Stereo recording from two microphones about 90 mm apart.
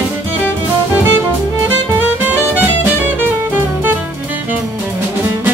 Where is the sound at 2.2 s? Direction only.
20° right (ahead or behind).